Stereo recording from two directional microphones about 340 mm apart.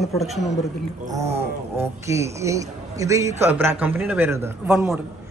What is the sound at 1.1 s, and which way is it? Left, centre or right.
A man's voice, centre.